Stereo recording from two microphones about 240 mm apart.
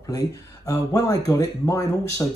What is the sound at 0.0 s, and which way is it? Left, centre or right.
Speech, centre.